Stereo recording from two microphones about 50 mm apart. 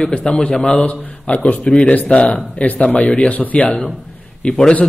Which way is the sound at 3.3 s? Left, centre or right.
Left.